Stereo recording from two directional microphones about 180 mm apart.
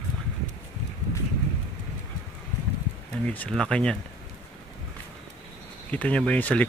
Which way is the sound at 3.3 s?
5° left (ahead or behind).